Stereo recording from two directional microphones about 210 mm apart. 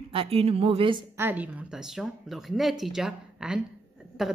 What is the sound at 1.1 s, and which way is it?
Speech, 10° right (ahead or behind).